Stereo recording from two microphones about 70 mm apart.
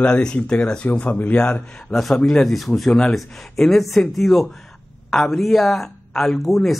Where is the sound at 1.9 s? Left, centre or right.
Centre.